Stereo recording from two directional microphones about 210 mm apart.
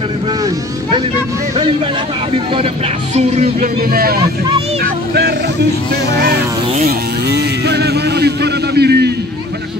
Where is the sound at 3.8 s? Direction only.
45° right (ahead or behind).